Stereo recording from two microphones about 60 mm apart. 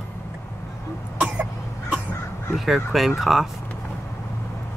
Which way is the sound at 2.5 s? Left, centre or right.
Centre.